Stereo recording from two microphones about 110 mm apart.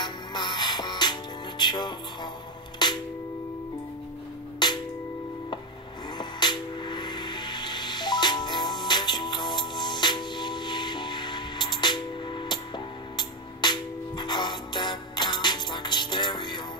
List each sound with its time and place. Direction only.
0.0 s music: 40° left (ahead or behind)
4.6 s music: 40° left (ahead or behind)
6.1 s music: 45° left (ahead or behind)